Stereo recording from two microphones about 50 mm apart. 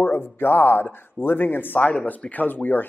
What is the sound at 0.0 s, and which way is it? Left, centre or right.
Speech, left.